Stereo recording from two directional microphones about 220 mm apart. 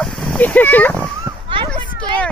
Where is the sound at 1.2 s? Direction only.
20° right (ahead or behind).